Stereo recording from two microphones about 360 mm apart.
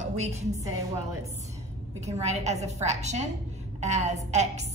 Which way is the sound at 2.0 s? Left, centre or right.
Centre.